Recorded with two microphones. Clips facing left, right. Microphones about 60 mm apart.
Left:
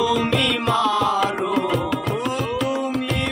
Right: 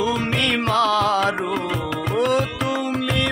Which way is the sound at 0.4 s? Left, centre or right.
Right.